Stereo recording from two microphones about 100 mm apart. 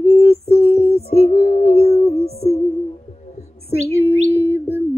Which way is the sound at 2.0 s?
90° left.